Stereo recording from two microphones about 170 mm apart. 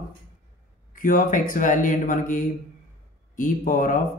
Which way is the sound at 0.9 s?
50° left (ahead or behind).